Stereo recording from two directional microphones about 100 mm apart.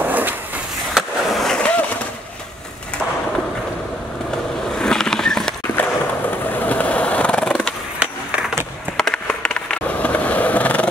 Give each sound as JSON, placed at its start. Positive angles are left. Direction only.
{"t": 0.0, "sound": "a sound", "side_deg": -20}
{"t": 0.9, "sound": "skateboard", "side_deg": 0}
{"t": 4.7, "sound": "vehicle", "side_deg": 5}
{"t": 6.5, "sound": "skateboard", "side_deg": 15}
{"t": 8.9, "sound": "skateboard", "side_deg": 10}